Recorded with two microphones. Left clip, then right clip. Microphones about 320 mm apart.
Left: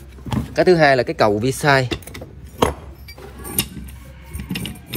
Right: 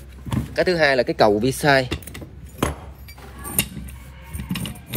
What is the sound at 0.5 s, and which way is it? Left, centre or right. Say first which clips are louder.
Speech: left 4 dB; centre.